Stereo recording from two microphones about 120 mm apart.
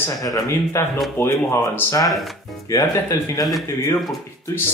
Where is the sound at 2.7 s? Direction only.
30° left (ahead or behind).